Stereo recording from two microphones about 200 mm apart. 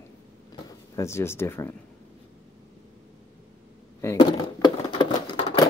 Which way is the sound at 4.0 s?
20° left (ahead or behind).